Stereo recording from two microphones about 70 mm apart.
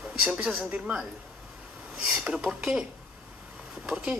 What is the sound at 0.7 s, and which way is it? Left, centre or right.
Speech, centre.